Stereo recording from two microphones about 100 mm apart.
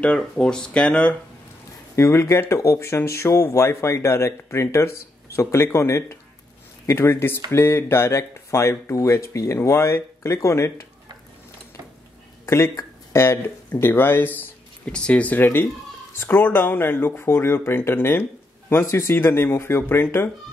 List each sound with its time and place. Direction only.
0.2 s speech: 10° left (ahead or behind)
2.0 s speech: 25° left (ahead or behind)
12.4 s speech: 30° left (ahead or behind)